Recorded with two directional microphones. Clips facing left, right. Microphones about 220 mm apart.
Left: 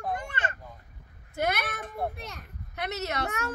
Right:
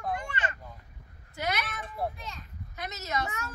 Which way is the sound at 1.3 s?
55° left (ahead or behind).